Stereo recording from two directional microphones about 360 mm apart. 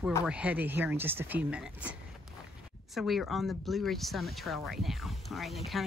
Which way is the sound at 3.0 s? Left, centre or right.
Centre.